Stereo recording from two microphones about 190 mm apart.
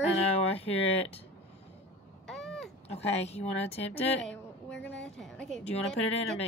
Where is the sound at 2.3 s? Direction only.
5° left (ahead or behind).